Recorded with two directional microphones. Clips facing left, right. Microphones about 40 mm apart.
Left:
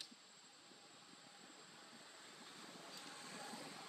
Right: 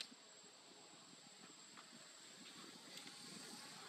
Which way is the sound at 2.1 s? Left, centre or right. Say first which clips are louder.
Left 2 dB; left.